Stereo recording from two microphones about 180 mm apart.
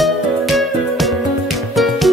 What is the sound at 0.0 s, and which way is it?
Music, centre (ahead or behind).